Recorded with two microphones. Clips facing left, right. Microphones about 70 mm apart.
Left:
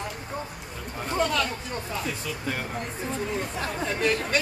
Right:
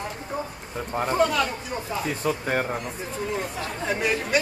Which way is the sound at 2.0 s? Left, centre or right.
Right.